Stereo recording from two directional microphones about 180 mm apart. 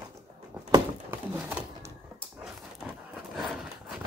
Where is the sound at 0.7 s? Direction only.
10° right (ahead or behind).